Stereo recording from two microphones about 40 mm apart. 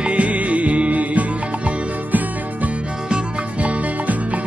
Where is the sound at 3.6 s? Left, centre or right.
Right.